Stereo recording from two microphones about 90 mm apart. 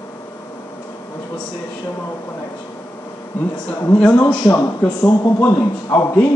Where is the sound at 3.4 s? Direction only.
20° left (ahead or behind).